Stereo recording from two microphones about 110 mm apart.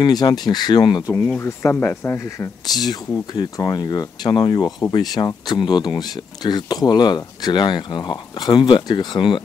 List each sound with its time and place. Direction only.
0.0 s speech: 40° left (ahead or behind)
1.4 s speech: 20° left (ahead or behind)
2.7 s speech: 40° left (ahead or behind)